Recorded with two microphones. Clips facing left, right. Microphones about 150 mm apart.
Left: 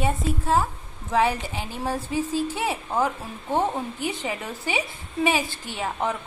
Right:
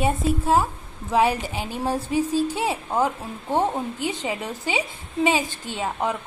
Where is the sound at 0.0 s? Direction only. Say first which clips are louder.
Right 3 dB; 10° right (ahead or behind).